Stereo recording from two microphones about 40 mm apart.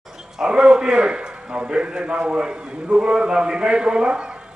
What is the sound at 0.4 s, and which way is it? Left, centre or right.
A man's voice, centre.